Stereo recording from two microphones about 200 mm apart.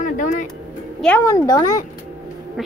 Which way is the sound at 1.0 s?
10° left (ahead or behind).